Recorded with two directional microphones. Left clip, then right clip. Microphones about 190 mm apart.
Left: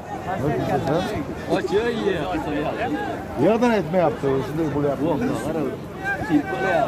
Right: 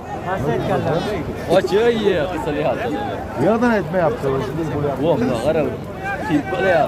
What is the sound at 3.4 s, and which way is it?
Speech, 25° left (ahead or behind).